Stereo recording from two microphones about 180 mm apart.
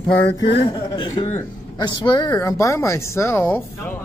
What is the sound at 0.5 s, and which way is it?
A man's voice, 30° left (ahead or behind).